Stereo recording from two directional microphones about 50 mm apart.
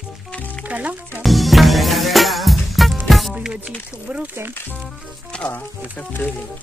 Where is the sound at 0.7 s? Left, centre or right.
Right.